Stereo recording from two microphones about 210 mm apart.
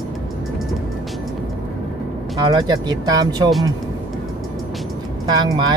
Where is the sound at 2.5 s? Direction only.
20° right (ahead or behind).